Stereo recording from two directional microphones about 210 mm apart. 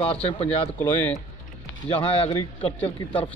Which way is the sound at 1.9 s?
25° left (ahead or behind).